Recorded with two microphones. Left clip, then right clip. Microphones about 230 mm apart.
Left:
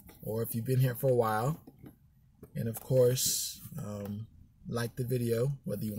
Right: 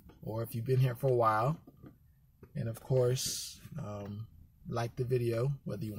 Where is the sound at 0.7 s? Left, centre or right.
Centre.